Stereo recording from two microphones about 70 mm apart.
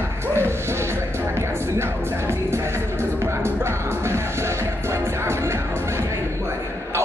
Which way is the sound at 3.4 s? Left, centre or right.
Right.